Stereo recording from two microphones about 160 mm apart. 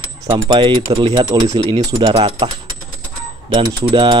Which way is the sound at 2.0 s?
30° right (ahead or behind).